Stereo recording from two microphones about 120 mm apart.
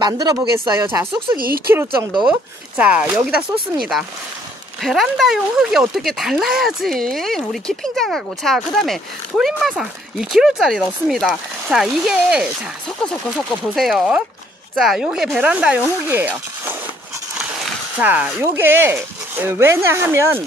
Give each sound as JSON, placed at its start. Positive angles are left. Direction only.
{"t": 0.0, "sound": "speech", "side_deg": -30}
{"t": 1.3, "sound": "speech", "side_deg": -20}
{"t": 4.8, "sound": "speech", "side_deg": 0}
{"t": 13.0, "sound": "speech", "side_deg": 5}
{"t": 17.9, "sound": "speech", "side_deg": -15}